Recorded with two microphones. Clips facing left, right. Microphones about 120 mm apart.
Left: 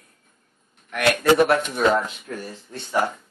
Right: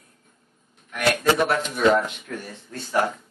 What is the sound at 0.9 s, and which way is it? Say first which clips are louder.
Speech: left 3 dB; 65° left (ahead or behind).